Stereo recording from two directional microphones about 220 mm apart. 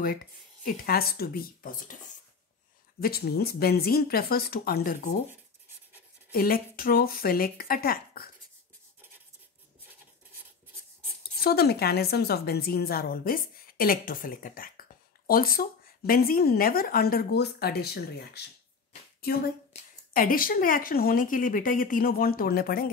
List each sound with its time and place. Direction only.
0.7 s a woman's voice: 45° left (ahead or behind)
3.0 s a woman's voice: 45° left (ahead or behind)
6.3 s speech: 40° left (ahead or behind)
11.4 s a woman's voice: 45° left (ahead or behind)
19.7 s speech: 40° left (ahead or behind)